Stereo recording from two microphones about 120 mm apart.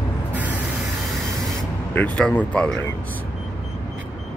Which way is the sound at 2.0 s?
10° left (ahead or behind).